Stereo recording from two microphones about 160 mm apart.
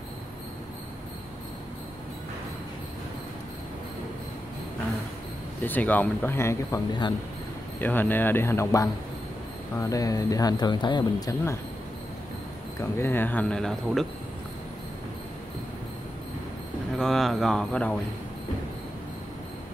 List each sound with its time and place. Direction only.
5.6 s speech: 10° left (ahead or behind)
7.8 s speech: 10° left (ahead or behind)
12.8 s speech: 15° left (ahead or behind)
17.0 s speech: centre (ahead or behind)